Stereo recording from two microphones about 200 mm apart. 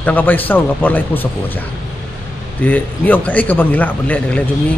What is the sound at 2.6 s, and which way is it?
A man's voice, 10° left (ahead or behind).